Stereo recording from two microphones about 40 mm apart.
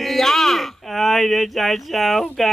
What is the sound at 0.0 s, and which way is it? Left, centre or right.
A man's voice, centre.